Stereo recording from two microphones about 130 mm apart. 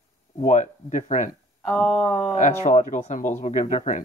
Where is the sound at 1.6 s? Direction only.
Centre (ahead or behind).